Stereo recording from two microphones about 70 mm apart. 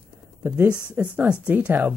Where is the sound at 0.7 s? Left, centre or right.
Centre.